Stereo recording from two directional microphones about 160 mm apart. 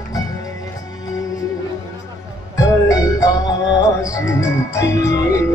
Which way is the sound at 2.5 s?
20° left (ahead or behind).